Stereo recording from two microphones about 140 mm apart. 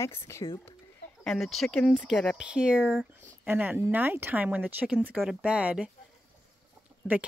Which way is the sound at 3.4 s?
10° right (ahead or behind).